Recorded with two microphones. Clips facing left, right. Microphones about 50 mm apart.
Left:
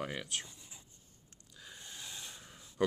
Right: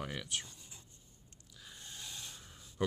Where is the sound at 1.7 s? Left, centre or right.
Centre.